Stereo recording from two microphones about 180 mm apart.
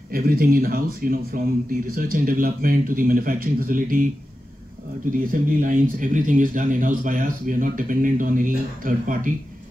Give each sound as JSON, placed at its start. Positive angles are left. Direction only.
{"t": 0.1, "sound": "a man's voice", "side_deg": -55}
{"t": 5.2, "sound": "a man's voice", "side_deg": -50}